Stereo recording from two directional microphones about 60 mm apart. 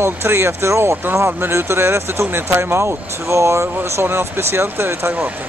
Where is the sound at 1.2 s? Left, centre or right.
Right.